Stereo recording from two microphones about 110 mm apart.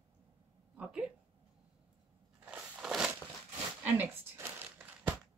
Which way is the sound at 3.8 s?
15° right (ahead or behind).